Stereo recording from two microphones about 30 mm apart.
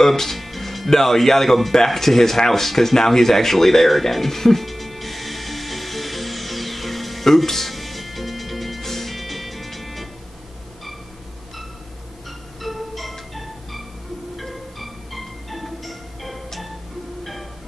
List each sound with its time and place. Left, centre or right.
0.0 s speech: centre
2.0 s a sound: centre
12.6 s music: centre